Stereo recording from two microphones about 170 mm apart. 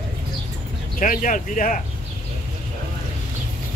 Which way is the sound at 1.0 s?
50° left (ahead or behind).